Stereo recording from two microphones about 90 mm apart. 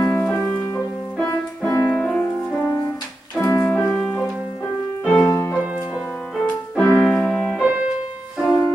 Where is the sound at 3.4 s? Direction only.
25° left (ahead or behind).